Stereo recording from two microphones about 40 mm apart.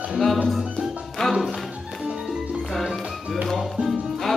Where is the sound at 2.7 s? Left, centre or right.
Centre.